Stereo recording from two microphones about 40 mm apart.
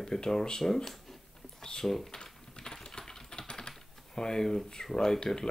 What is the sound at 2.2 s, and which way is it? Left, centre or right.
Typing, centre.